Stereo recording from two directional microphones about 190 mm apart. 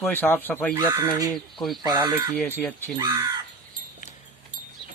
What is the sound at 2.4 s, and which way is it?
Speech, 10° left (ahead or behind).